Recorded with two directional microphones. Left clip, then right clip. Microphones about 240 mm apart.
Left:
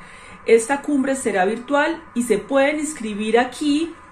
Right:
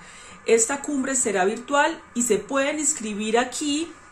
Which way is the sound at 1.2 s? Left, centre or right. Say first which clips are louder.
Left 3 dB; centre.